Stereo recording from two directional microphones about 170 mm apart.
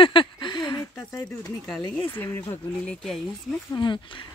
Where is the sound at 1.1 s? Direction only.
10° left (ahead or behind).